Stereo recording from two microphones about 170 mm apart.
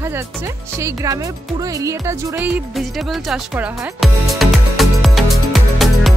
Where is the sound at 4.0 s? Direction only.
Centre (ahead or behind).